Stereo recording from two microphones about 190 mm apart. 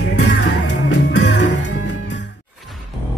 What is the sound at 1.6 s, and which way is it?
Music, 70° left (ahead or behind).